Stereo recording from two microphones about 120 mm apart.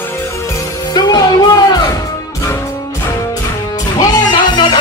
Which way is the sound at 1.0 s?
35° left (ahead or behind).